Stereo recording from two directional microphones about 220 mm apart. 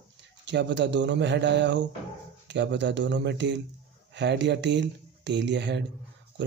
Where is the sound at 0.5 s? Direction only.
55° right (ahead or behind).